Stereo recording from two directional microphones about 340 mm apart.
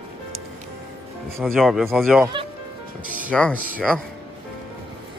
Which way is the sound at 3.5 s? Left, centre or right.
Right.